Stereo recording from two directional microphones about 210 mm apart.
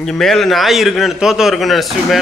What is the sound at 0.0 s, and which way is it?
A man's voice, centre (ahead or behind).